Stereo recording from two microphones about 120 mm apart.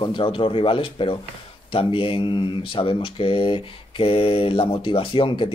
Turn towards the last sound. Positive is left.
turn(degrees=45)  # may be behind; listen again after turning